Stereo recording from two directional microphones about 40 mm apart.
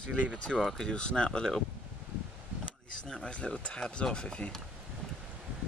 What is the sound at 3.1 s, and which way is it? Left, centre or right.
Speech, left.